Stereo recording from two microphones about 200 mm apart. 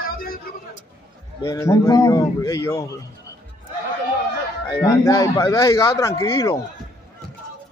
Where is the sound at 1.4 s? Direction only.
15° left (ahead or behind).